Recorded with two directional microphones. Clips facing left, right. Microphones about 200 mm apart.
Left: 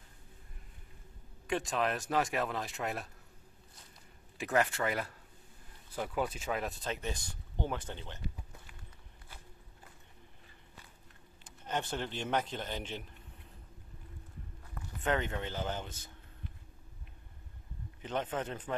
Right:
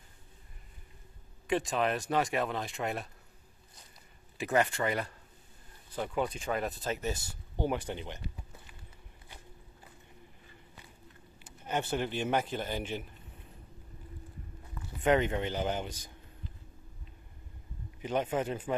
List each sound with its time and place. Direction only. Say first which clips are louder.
1.5 s speech: right 3 dB; centre (ahead or behind)
4.4 s speech: right 2 dB; centre (ahead or behind)
11.4 s a man's voice: right 3 dB; 10° right (ahead or behind)
14.9 s a man's voice: right 6 dB; 15° right (ahead or behind)
18.0 s a man's voice: right 5 dB; 10° right (ahead or behind)